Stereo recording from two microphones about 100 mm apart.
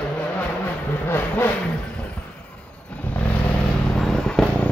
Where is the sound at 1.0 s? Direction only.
20° left (ahead or behind).